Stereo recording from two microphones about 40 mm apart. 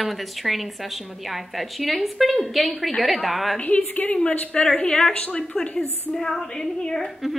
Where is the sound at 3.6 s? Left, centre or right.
Left.